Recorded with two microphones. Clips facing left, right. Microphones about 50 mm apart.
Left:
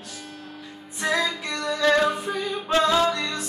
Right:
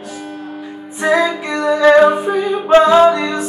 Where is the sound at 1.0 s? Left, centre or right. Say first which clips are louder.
Right 10 dB; centre.